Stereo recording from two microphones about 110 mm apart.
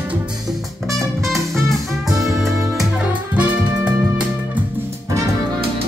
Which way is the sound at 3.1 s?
10° right (ahead or behind).